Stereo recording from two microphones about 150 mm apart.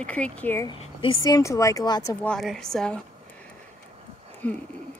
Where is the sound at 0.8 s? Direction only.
35° left (ahead or behind).